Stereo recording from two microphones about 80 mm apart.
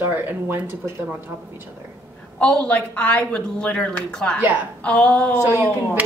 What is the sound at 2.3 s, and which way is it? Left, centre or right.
A woman's voice, centre.